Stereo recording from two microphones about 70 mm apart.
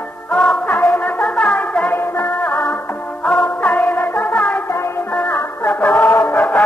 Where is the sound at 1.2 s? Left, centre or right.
Centre.